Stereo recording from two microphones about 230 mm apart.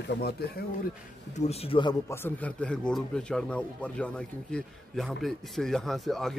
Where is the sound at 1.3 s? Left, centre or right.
Left.